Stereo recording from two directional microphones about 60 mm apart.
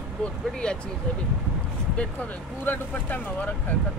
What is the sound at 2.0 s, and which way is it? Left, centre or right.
Speech, left.